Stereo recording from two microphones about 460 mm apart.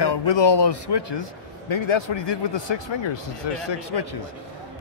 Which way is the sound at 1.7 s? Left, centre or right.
Left.